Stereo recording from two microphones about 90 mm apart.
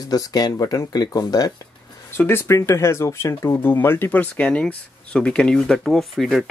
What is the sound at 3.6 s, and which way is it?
Speech, 25° left (ahead or behind).